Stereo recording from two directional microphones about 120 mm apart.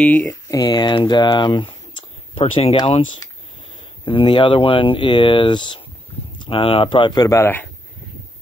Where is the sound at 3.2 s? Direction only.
25° left (ahead or behind).